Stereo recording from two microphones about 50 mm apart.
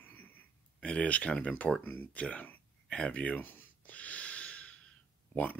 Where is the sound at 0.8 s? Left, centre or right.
Left.